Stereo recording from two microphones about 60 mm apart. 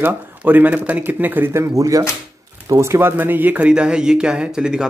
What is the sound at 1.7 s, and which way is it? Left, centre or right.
Speech, right.